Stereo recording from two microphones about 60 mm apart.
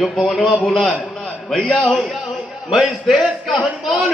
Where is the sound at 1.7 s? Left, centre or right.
Left.